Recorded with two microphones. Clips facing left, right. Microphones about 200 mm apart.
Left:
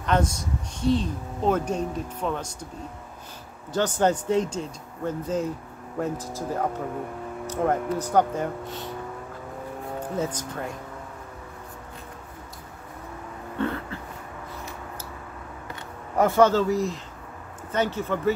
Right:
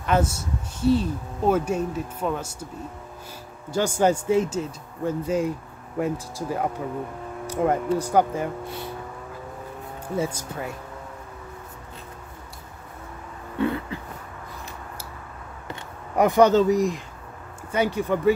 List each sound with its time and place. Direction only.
0.0 s speech: 5° right (ahead or behind)
3.7 s speech: 10° right (ahead or behind)
10.1 s speech: 10° right (ahead or behind)
13.6 s speech: 15° right (ahead or behind)
16.2 s speech: 15° right (ahead or behind)